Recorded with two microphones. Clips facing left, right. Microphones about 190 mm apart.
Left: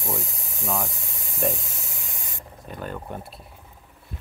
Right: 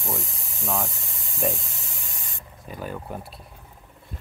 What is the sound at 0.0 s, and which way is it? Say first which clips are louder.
Speech: left 1 dB; centre (ahead or behind).